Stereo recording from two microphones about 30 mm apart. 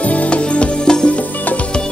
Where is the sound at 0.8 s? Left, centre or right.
Left.